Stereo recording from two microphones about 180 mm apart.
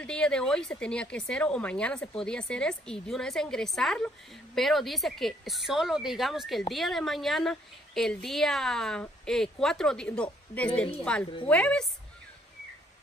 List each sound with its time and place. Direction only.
0.0 s a woman's voice: 5° left (ahead or behind)